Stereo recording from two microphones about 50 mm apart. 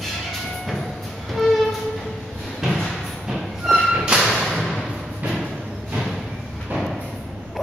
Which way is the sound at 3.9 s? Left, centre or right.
Centre.